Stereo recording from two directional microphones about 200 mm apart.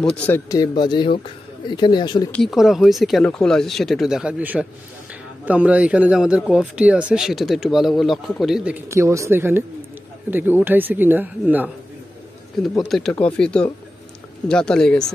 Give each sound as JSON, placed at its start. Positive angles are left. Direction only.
{"t": 0.1, "sound": "speech", "side_deg": 5}
{"t": 0.5, "sound": "speech", "side_deg": 20}
{"t": 2.3, "sound": "a man's voice", "side_deg": 0}